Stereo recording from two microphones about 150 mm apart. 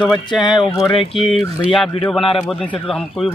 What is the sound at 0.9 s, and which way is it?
Speech, 35° left (ahead or behind).